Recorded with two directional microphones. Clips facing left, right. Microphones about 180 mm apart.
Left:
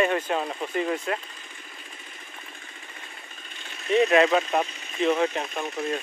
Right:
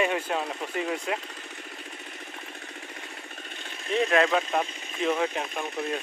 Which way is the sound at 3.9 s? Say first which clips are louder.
Left 4 dB; 5° left (ahead or behind).